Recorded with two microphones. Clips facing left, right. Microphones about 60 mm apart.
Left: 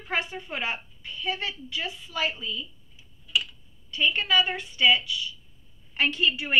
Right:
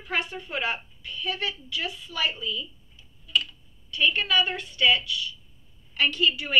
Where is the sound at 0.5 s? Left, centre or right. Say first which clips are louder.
Right 2 dB; left.